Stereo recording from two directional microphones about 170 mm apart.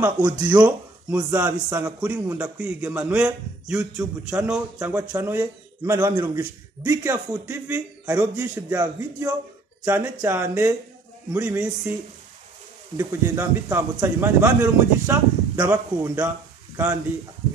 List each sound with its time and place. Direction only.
0.5 s speech: 10° right (ahead or behind)
4.3 s speech: 10° right (ahead or behind)
12.9 s speech: 15° right (ahead or behind)